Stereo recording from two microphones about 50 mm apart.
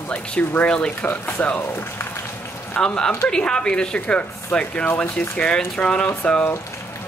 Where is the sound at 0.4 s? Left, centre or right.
Left.